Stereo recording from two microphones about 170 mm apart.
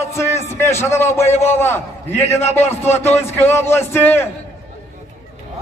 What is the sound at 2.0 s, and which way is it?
Speech, 40° left (ahead or behind).